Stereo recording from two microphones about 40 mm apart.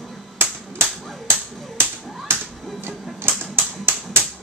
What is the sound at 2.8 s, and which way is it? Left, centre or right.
Typewriter, right.